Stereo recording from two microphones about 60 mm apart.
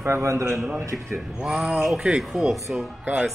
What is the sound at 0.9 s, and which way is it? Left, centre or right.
Speech, centre.